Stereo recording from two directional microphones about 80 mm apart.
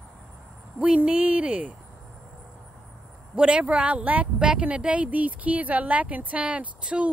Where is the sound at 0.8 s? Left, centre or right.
Centre.